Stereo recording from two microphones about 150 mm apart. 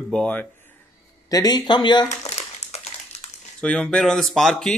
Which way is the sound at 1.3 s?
25° left (ahead or behind).